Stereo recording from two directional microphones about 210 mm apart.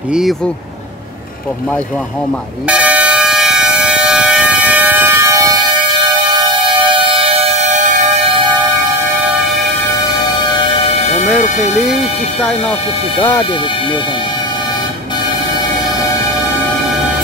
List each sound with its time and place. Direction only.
0.1 s speech: centre (ahead or behind)
2.7 s air horn: 5° right (ahead or behind)
6.9 s civil defense siren: 25° right (ahead or behind)
11.2 s speech: centre (ahead or behind)